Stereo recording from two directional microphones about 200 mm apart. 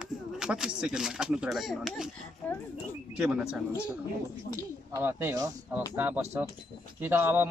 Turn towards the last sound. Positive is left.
turn(degrees=-10)  # may be behind; listen again after turning